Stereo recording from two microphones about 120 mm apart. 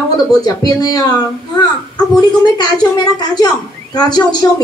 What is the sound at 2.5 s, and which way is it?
A woman's voice, 35° left (ahead or behind).